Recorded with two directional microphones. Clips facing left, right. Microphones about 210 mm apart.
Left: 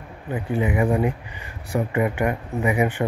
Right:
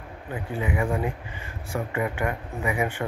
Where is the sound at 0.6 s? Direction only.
20° left (ahead or behind).